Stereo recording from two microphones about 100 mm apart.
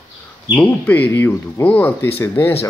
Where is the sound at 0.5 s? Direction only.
15° left (ahead or behind).